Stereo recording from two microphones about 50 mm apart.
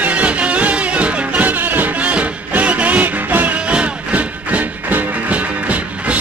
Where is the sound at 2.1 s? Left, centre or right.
Right.